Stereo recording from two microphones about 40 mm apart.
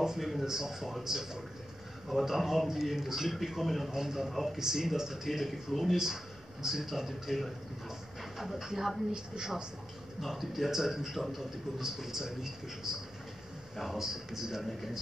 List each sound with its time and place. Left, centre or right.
0.2 s a man's voice: centre
6.6 s a man's voice: centre
10.2 s a man's voice: centre
13.7 s speech: centre